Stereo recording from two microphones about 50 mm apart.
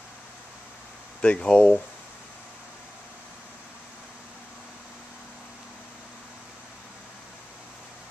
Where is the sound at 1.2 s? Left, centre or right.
Left.